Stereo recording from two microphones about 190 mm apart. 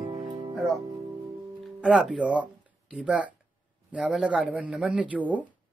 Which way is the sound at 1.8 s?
5° right (ahead or behind).